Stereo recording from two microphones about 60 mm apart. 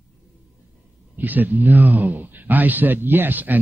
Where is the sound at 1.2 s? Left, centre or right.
Right.